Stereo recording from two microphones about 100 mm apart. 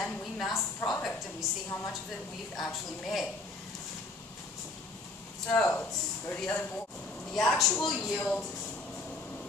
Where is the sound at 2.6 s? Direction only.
Centre (ahead or behind).